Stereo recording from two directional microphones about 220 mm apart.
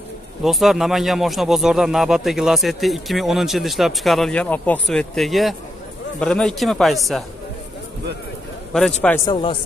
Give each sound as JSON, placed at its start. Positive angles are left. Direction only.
{"t": 0.4, "sound": "speech", "side_deg": 0}
{"t": 8.7, "sound": "speech", "side_deg": 0}
{"t": 9.3, "sound": "speech", "side_deg": 25}